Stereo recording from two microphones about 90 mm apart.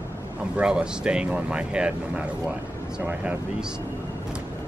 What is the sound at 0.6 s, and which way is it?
Speech, 10° right (ahead or behind).